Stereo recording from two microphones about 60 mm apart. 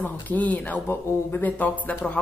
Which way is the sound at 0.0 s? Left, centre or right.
Left.